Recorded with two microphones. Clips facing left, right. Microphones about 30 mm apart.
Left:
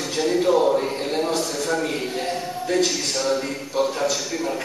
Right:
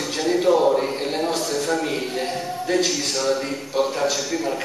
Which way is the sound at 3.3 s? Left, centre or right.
Centre.